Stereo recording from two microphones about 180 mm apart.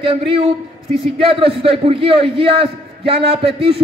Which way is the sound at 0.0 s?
30° right (ahead or behind).